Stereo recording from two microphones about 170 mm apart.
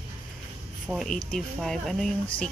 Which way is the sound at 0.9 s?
Centre (ahead or behind).